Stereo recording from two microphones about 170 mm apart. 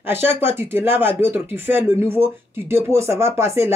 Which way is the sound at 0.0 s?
10° right (ahead or behind).